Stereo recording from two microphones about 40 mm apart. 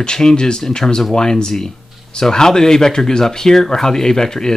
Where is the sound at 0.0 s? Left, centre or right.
Centre.